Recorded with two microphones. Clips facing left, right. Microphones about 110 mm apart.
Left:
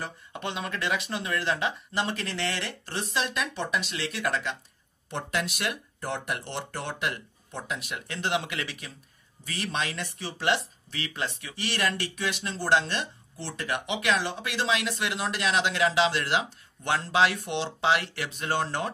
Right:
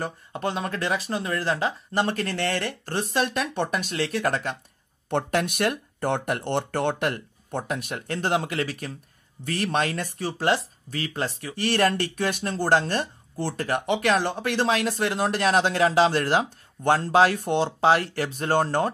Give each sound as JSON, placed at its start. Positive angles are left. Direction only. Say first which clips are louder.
{"t": 0.3, "sound": "speech", "louder": "right 5 dB", "side_deg": -40}